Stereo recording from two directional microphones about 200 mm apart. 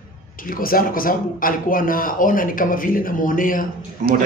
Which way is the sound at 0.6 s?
45° left (ahead or behind).